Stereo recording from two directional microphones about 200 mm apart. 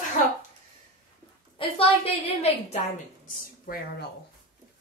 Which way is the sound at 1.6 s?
25° left (ahead or behind).